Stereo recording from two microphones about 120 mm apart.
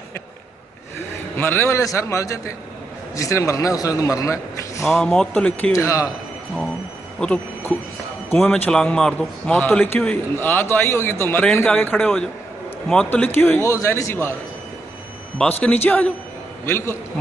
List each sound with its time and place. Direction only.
1.4 s a man's voice: 20° left (ahead or behind)
4.8 s a man's voice: 5° left (ahead or behind)
5.7 s a man's voice: 25° left (ahead or behind)
7.2 s a man's voice: 10° left (ahead or behind)
15.6 s a man's voice: 10° left (ahead or behind)